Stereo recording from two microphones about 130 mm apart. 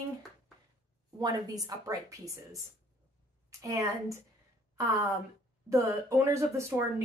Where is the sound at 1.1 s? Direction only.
30° right (ahead or behind).